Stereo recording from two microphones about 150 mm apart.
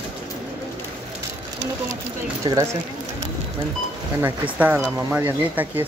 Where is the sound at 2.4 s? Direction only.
30° right (ahead or behind).